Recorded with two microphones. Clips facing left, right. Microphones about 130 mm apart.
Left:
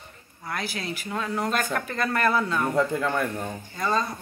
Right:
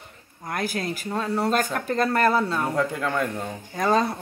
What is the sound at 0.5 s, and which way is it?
Mantra, 50° right (ahead or behind).